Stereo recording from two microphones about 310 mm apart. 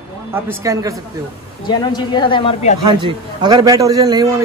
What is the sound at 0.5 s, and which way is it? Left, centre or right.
Speech, centre.